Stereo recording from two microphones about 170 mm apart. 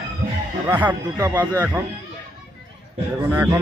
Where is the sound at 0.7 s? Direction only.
10° right (ahead or behind).